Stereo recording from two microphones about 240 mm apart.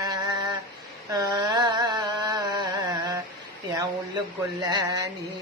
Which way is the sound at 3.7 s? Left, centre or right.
Centre.